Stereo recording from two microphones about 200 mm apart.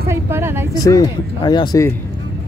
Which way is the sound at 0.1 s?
10° right (ahead or behind).